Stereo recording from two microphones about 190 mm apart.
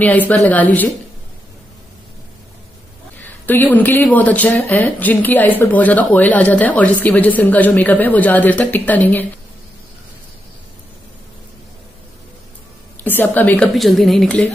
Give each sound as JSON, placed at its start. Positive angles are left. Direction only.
{"t": 0.3, "sound": "speech", "side_deg": 10}
{"t": 3.2, "sound": "speech", "side_deg": 10}
{"t": 13.0, "sound": "speech", "side_deg": 10}